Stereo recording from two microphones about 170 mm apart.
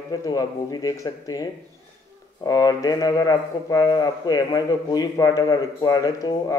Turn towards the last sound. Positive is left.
turn(degrees=20)  # may be behind; listen again after turning